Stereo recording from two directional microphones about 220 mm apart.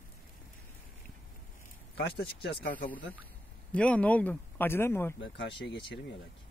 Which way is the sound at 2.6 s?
5° left (ahead or behind).